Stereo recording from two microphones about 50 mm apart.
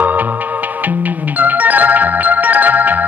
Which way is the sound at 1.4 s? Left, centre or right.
Right.